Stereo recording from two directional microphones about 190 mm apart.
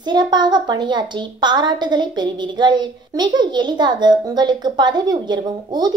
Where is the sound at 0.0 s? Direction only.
25° right (ahead or behind).